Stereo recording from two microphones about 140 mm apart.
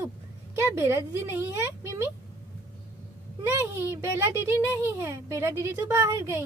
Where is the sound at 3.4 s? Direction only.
15° right (ahead or behind).